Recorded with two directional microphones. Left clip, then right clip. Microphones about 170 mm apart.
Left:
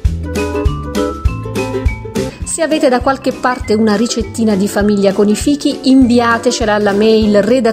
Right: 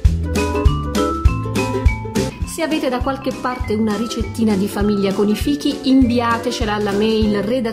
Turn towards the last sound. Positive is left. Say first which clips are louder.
# left 8 dB
turn(degrees=40)  # may be behind; listen again after turning